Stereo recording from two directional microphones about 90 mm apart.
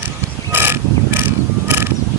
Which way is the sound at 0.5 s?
25° right (ahead or behind).